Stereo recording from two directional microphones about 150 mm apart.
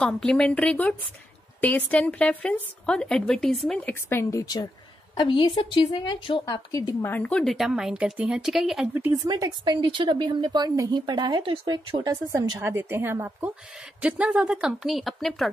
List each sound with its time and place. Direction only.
0.0 s speech: 5° left (ahead or behind); by 4.6 s 20° left (ahead or behind)
5.1 s a woman's voice: 35° left (ahead or behind)
7.1 s speech: 10° left (ahead or behind)
8.9 s speech: 20° right (ahead or behind); by 15.5 s centre (ahead or behind)